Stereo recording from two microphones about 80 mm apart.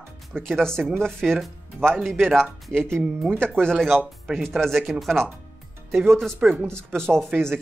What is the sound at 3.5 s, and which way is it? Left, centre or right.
Speech, centre.